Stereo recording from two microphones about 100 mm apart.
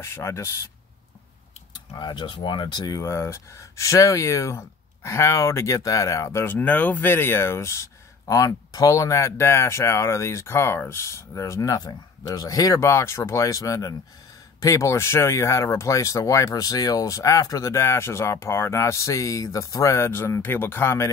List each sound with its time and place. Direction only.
0.0 s speech: 25° left (ahead or behind)
2.0 s speech: 50° left (ahead or behind)
3.0 s speech: 25° left (ahead or behind)